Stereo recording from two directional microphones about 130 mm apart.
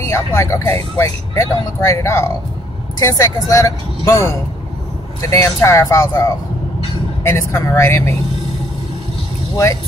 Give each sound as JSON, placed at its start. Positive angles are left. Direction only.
{"t": 0.0, "sound": "speech", "side_deg": 20}
{"t": 5.3, "sound": "speech", "side_deg": 25}